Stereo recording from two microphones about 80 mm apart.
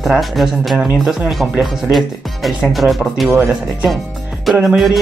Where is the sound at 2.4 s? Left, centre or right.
Centre.